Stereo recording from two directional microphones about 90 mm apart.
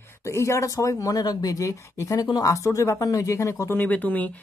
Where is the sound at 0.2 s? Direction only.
35° left (ahead or behind).